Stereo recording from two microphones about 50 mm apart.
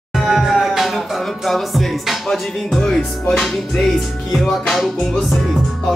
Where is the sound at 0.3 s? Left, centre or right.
Centre.